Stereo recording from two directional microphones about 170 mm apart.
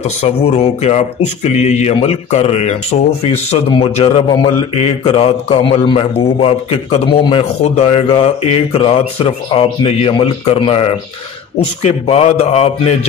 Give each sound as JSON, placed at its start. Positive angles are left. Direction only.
{"t": 0.0, "sound": "speech", "side_deg": 40}